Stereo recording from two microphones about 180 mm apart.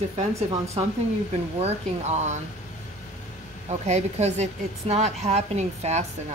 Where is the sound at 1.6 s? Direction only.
35° right (ahead or behind).